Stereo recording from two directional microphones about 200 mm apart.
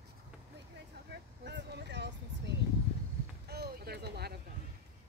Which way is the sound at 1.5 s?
55° right (ahead or behind).